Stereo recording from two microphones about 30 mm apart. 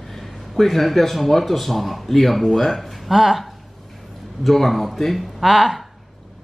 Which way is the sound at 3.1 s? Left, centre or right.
Centre.